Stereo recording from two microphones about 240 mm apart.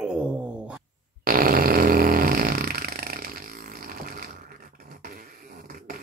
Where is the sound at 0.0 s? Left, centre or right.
Centre.